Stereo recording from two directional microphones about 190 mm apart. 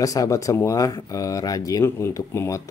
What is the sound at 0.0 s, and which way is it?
Speech, 20° left (ahead or behind).